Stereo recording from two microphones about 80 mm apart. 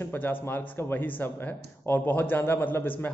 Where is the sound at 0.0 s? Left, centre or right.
Left.